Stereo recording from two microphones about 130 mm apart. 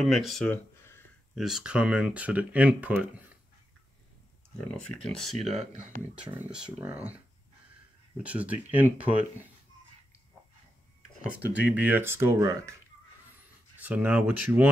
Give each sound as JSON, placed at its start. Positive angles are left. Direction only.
{"t": 0.0, "sound": "speech", "side_deg": 0}
{"t": 0.5, "sound": "a sound", "side_deg": 15}
{"t": 1.3, "sound": "speech", "side_deg": -5}
{"t": 4.6, "sound": "speech", "side_deg": 10}
{"t": 5.4, "sound": "speech", "side_deg": -55}
{"t": 6.2, "sound": "speech", "side_deg": -10}
{"t": 8.2, "sound": "speech", "side_deg": -10}
{"t": 11.2, "sound": "speech", "side_deg": -10}
{"t": 13.7, "sound": "speech", "side_deg": -10}